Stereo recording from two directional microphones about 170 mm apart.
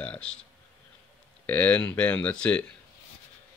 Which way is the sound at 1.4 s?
10° left (ahead or behind).